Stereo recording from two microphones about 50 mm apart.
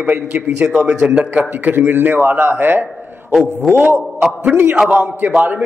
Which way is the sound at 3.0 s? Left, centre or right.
Right.